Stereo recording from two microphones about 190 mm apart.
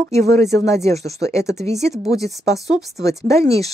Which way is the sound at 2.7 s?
Centre (ahead or behind).